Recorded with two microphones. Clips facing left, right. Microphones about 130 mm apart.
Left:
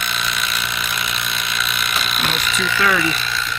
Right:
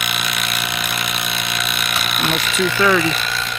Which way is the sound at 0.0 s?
65° right (ahead or behind).